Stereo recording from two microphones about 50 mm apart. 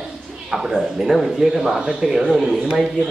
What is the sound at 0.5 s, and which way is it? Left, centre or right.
A man's voice, centre.